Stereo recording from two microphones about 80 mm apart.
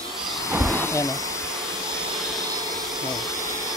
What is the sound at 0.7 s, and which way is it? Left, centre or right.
Speech, left.